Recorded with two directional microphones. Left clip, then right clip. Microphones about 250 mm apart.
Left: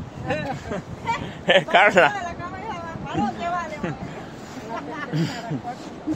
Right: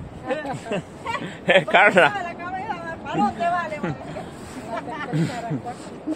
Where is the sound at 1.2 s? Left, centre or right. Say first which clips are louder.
Right 1 dB; centre.